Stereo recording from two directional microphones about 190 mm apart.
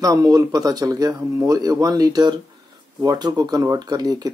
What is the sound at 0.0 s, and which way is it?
Speech, 20° right (ahead or behind).